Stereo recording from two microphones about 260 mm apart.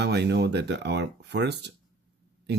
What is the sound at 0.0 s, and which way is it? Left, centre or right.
Speech, right.